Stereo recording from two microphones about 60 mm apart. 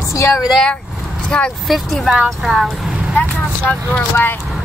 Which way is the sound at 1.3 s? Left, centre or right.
Centre.